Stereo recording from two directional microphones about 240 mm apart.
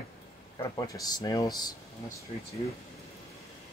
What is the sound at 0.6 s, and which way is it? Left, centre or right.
Speech, centre.